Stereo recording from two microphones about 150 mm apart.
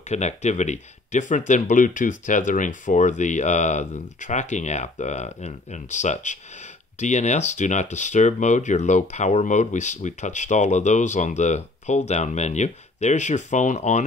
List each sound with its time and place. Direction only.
0.1 s speech: 50° left (ahead or behind)